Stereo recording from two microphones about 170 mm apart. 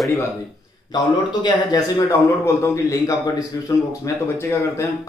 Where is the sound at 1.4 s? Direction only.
20° left (ahead or behind).